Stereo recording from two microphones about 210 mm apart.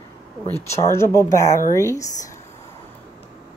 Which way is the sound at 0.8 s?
15° left (ahead or behind).